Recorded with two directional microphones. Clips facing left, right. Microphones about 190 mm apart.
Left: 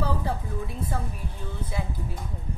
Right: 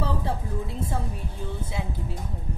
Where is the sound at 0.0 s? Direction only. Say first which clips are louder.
Even; 25° right (ahead or behind).